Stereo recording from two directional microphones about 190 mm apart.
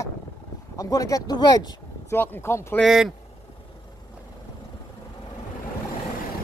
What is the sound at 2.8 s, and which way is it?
Speech, centre (ahead or behind).